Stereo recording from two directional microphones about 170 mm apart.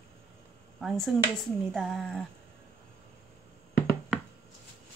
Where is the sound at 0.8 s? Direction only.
Centre (ahead or behind).